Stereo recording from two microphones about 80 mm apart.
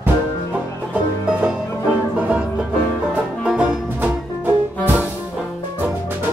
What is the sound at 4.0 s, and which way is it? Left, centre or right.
Music, right.